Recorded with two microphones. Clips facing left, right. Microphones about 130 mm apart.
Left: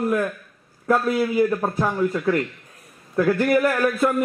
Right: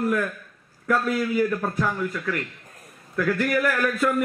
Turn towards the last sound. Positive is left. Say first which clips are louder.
# left 3 dB
turn(degrees=35)  # may be behind; listen again after turning